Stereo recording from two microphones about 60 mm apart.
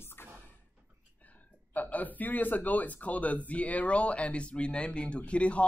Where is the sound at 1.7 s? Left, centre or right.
Left.